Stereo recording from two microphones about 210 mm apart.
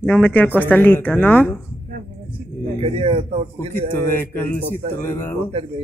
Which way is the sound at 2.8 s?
30° right (ahead or behind).